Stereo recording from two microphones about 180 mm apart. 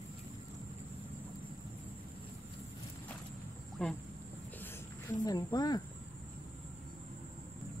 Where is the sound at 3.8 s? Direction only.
5° left (ahead or behind).